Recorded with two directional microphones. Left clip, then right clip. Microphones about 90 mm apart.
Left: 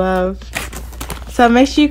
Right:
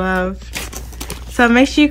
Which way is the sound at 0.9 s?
40° left (ahead or behind).